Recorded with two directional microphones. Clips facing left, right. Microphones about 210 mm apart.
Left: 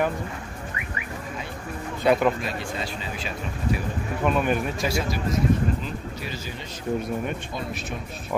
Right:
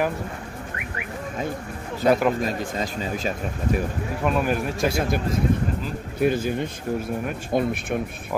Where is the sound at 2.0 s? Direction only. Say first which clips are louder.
Right 1 dB; 45° right (ahead or behind).